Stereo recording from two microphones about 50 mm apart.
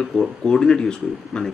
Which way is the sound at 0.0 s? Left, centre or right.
Centre.